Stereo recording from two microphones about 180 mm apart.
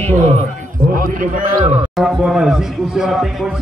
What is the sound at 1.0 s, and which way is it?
Speech, 50° right (ahead or behind).